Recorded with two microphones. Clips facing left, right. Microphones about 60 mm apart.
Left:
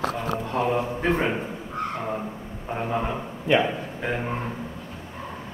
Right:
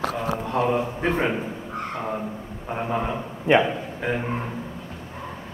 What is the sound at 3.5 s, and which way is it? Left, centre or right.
Speech, right.